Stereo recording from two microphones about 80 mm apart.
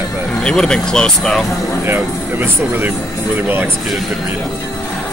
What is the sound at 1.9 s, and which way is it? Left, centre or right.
Speech, right.